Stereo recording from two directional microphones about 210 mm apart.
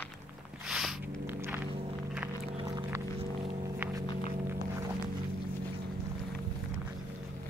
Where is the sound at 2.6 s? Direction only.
20° right (ahead or behind).